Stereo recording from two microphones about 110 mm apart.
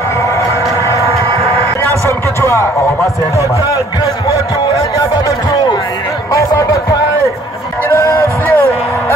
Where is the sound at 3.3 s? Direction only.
30° left (ahead or behind).